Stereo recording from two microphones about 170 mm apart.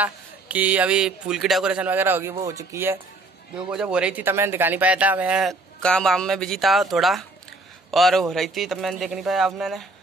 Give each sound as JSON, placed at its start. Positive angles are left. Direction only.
{"t": 0.0, "sound": "a man's voice", "side_deg": -10}